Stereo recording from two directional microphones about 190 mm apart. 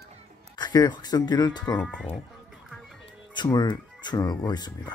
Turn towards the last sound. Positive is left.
turn(degrees=20)  # may be behind; listen again after turning